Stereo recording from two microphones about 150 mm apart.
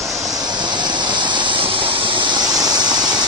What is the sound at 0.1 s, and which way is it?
Vehicle, 25° right (ahead or behind).